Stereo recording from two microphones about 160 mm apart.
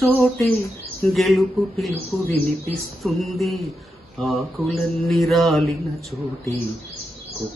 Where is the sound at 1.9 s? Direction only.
40° right (ahead or behind).